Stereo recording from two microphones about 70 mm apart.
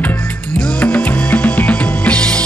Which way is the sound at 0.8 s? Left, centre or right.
Left.